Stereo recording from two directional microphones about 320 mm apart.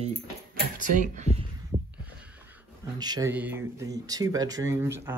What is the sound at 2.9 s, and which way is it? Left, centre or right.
Speech, centre.